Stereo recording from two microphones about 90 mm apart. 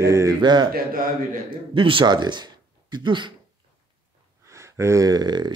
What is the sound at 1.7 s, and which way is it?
Speech, 75° right (ahead or behind).